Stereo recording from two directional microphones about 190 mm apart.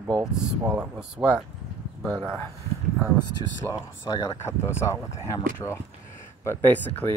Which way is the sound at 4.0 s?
20° left (ahead or behind).